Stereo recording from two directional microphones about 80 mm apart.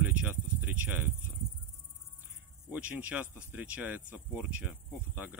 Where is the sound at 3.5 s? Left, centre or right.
Centre.